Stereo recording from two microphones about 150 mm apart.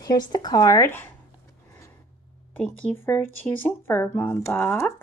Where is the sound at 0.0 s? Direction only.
25° left (ahead or behind).